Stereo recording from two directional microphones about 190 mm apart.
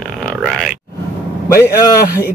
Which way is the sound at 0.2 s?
Centre (ahead or behind).